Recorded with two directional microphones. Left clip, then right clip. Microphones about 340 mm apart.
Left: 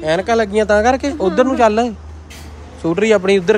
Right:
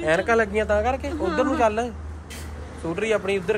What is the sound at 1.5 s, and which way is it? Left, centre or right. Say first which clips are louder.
Speech: left 8 dB; left.